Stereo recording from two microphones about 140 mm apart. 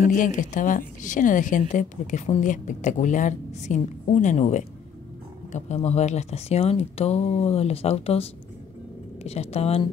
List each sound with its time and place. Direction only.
0.1 s a woman's voice: 70° left (ahead or behind); by 9.8 s 45° left (ahead or behind)